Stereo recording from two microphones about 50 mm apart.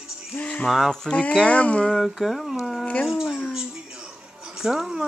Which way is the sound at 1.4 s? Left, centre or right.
Left.